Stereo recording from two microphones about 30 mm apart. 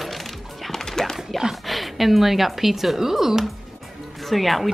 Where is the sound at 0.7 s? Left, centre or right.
Centre.